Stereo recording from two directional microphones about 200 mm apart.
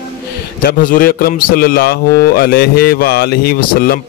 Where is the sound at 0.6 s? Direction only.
45° left (ahead or behind).